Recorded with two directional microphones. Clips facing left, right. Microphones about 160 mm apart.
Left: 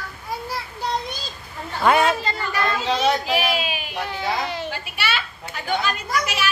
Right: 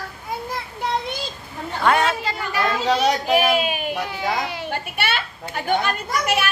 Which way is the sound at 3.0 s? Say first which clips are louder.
Right 2 dB; 50° right (ahead or behind).